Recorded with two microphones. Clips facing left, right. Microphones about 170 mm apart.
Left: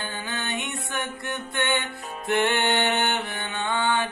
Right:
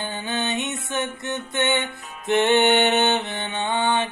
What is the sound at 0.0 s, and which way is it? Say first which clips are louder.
Music: right 5 dB; 20° right (ahead or behind).